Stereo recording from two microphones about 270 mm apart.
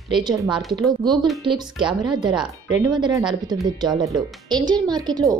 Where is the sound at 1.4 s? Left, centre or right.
Centre.